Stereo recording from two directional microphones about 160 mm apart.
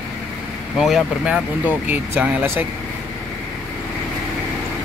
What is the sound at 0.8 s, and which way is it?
Speech, centre (ahead or behind).